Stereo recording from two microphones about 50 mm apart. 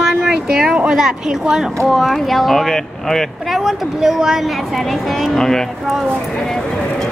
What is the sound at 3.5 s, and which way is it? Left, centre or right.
Speech, centre.